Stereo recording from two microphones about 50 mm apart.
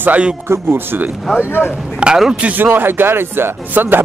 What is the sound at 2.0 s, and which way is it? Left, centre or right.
Speech, right.